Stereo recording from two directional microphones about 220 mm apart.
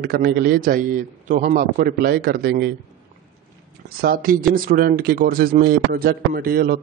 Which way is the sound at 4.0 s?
40° right (ahead or behind).